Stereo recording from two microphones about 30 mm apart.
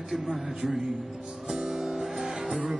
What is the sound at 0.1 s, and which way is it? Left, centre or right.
Music, centre.